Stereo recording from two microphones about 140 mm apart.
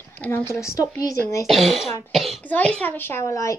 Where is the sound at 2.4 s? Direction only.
10° left (ahead or behind).